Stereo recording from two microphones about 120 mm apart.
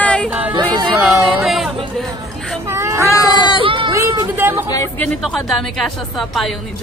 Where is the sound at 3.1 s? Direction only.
35° left (ahead or behind).